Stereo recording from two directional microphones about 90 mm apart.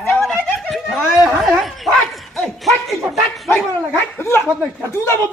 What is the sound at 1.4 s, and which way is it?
Dog, centre (ahead or behind).